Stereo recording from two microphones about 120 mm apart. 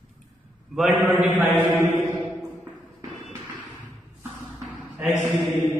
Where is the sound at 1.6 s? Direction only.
20° right (ahead or behind).